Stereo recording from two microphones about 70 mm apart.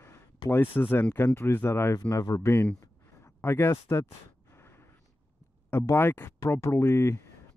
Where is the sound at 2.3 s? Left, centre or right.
Left.